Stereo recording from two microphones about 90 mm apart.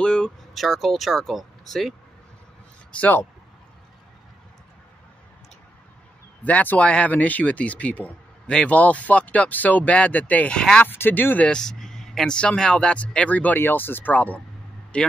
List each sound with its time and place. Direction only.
0.0 s speech: 10° left (ahead or behind)
2.9 s a man's voice: 15° left (ahead or behind)
6.4 s speech: 20° left (ahead or behind)
10.9 s speech: 20° left (ahead or behind)